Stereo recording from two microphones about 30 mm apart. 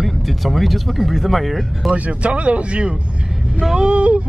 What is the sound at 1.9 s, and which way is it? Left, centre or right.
Speech, right.